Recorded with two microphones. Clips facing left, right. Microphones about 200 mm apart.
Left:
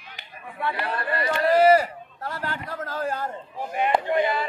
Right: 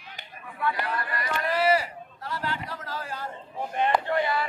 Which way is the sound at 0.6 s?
30° left (ahead or behind).